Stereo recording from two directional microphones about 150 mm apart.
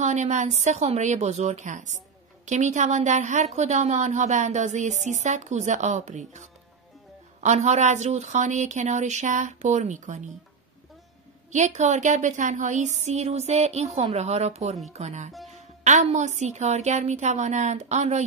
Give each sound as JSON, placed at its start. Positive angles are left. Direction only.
{"t": 0.0, "sound": "a woman's voice", "side_deg": -50}
{"t": 11.5, "sound": "a woman's voice", "side_deg": -50}